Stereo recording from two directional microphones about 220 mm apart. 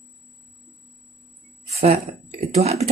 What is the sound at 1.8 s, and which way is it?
Speech, 30° right (ahead or behind).